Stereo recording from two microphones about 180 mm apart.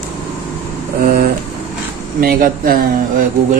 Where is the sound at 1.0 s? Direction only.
55° right (ahead or behind).